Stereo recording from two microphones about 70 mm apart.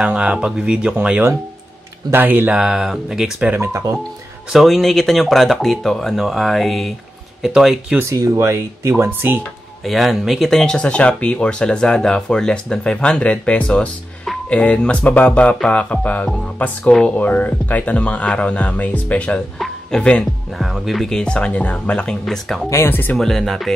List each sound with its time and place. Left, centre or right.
0.0 s speech: centre
2.1 s speech: right
2.5 s speech: centre
3.3 s speech: right
3.6 s speech: right
4.5 s speech: centre
8.0 s speech: right
9.8 s speech: centre
20.5 s speech: centre
22.2 s speech: centre
22.7 s speech: left
23.1 s speech: centre